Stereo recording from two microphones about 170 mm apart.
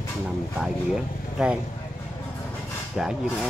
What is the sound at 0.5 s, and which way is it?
Speech, 5° right (ahead or behind).